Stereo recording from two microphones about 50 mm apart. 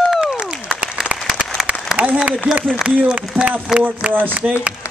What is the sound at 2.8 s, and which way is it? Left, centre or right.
Speech, right.